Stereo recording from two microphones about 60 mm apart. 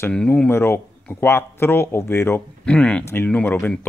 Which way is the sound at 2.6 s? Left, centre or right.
Centre.